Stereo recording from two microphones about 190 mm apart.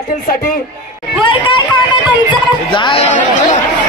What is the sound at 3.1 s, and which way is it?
Speech, 40° left (ahead or behind).